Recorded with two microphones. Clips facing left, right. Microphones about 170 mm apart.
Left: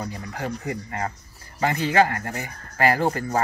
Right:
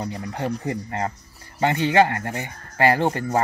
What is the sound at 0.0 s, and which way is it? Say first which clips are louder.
Speech: right 3 dB; 25° right (ahead or behind).